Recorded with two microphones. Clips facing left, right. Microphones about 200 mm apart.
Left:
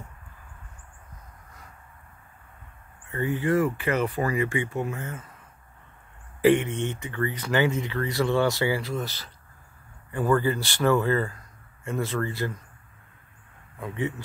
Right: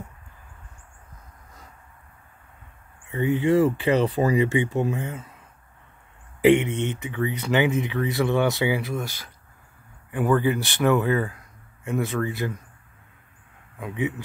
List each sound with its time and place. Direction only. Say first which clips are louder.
3.1 s speech: right 4 dB; 20° right (ahead or behind)
6.4 s speech: right 2 dB; 20° right (ahead or behind)
13.7 s speech: right 2 dB; 15° right (ahead or behind)